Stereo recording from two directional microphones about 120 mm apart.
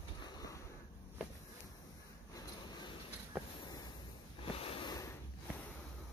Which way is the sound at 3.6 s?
35° left (ahead or behind).